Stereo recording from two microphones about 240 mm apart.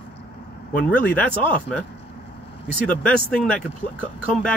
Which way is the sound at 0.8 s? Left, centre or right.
Centre.